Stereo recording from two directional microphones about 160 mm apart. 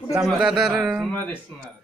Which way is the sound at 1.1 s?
10° left (ahead or behind).